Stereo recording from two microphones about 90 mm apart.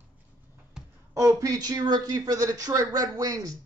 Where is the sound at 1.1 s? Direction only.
40° right (ahead or behind).